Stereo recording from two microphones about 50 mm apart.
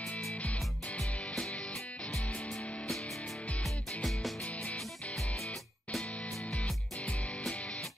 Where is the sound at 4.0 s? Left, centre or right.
Centre.